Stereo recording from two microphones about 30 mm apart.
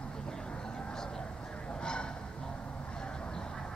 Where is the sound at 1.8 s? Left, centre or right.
Left.